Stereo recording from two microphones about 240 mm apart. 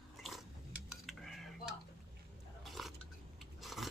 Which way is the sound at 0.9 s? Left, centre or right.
Centre.